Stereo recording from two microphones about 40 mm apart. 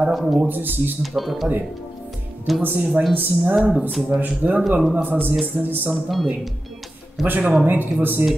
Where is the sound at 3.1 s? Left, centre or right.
Right.